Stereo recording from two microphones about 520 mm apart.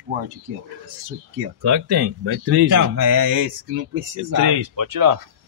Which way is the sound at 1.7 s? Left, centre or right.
Right.